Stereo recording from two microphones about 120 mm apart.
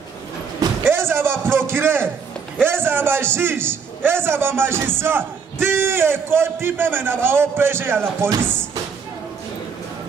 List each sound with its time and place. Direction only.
0.8 s a man's voice: 20° right (ahead or behind)